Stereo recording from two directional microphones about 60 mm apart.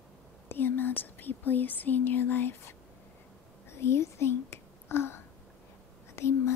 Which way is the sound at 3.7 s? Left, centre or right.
Left.